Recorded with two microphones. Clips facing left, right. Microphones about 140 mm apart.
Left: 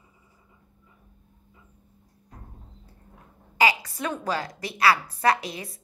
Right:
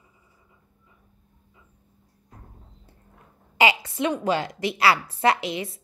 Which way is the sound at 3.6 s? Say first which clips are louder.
Right 2 dB; 25° right (ahead or behind).